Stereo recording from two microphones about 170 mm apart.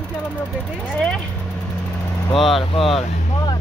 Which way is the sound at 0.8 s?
5° left (ahead or behind).